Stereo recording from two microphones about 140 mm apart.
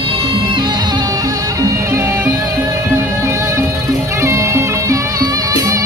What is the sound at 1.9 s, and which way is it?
Music, 20° right (ahead or behind).